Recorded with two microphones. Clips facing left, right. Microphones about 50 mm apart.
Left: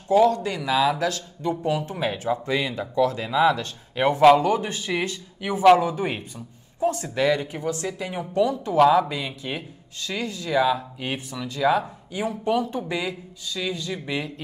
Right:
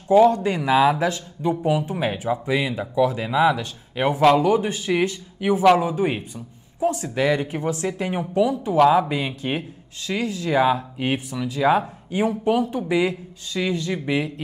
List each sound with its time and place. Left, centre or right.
0.1 s speech: right
7.5 s a man's voice: right
8.2 s speech: centre
9.1 s a man's voice: right
10.0 s speech: centre
10.5 s a man's voice: right
11.0 s speech: centre
13.0 s a man's voice: right